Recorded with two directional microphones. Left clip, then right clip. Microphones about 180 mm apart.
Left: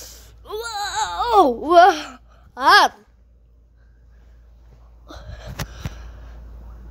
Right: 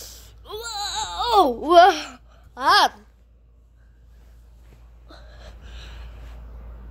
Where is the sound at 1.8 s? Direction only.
15° left (ahead or behind).